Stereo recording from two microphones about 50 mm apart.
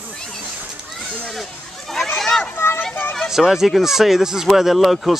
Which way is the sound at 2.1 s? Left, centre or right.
Centre.